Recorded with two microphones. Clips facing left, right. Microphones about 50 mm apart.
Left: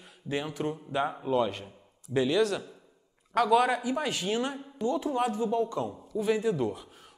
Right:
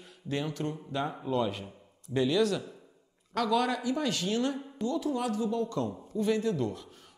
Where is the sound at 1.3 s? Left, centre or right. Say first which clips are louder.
Left 2 dB; centre.